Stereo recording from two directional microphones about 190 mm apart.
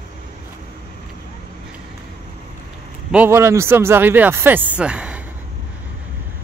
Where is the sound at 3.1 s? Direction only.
10° right (ahead or behind).